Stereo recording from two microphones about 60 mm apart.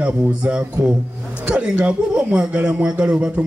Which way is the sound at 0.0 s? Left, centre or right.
Centre.